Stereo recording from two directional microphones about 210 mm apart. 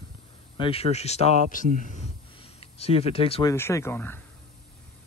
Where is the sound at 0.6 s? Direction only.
25° left (ahead or behind).